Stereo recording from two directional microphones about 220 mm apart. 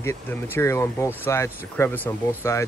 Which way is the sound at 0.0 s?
10° left (ahead or behind).